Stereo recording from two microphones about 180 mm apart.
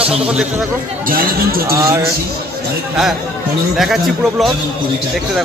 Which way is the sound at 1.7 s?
15° right (ahead or behind).